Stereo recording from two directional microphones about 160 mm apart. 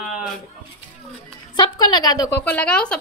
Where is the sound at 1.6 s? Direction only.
25° left (ahead or behind).